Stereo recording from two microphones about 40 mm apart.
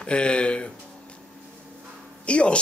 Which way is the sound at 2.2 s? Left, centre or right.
Left.